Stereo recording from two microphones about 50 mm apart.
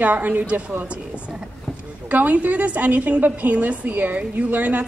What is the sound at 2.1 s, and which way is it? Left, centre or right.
A woman's voice, right.